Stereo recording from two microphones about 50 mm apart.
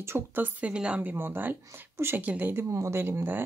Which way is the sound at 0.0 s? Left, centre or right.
Right.